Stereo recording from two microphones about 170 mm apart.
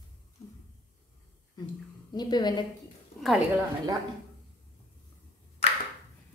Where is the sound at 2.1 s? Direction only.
25° left (ahead or behind).